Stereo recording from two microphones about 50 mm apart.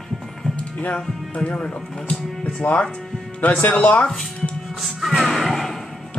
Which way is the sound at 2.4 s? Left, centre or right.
Left.